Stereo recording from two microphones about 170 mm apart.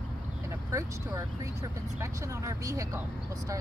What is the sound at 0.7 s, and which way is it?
Speech, 20° right (ahead or behind).